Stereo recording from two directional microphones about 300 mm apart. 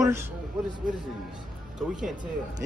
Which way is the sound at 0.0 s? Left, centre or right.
Centre.